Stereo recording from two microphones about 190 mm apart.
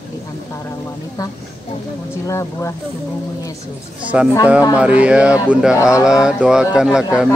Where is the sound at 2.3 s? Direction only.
15° left (ahead or behind).